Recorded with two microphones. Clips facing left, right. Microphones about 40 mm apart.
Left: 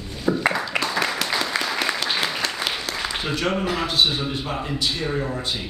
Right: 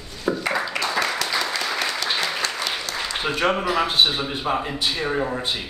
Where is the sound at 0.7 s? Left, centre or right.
Centre.